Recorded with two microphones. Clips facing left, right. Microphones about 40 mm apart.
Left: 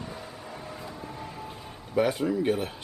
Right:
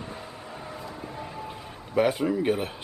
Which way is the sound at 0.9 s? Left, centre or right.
Centre.